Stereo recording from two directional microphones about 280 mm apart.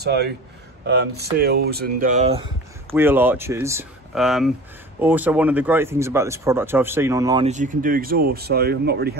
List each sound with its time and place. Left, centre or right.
0.0 s speech: right
2.9 s speech: centre
7.4 s speech: right